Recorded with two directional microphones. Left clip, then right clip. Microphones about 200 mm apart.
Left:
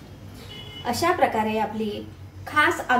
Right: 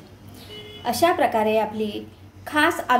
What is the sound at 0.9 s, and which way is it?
A woman's voice, 50° right (ahead or behind).